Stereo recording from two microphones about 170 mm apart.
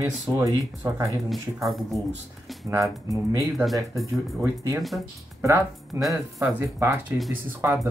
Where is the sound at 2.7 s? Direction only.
20° right (ahead or behind).